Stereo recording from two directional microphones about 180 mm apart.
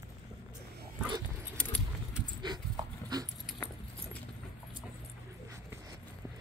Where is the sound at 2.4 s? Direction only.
25° right (ahead or behind).